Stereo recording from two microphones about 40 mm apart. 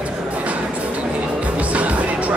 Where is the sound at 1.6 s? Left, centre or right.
Right.